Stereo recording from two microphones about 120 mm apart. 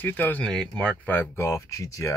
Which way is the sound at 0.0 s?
15° left (ahead or behind).